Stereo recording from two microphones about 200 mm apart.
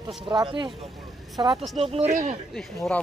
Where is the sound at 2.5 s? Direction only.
5° left (ahead or behind).